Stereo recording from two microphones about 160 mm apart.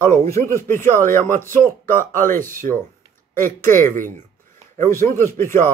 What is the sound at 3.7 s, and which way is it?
Speech, 55° right (ahead or behind).